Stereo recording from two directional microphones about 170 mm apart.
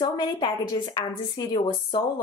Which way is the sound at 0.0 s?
25° left (ahead or behind).